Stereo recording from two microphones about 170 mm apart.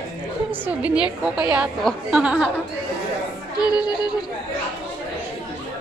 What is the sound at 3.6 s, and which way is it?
Speech, 25° left (ahead or behind).